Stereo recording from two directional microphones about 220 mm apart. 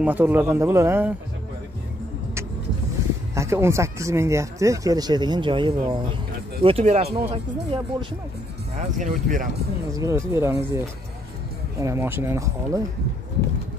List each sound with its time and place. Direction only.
0.0 s speech: 10° right (ahead or behind)
3.3 s speech: 10° right (ahead or behind); by 7.1 s 30° right (ahead or behind)
8.9 s speech: 35° right (ahead or behind)
9.9 s speech: 15° right (ahead or behind)
11.8 s speech: 10° right (ahead or behind)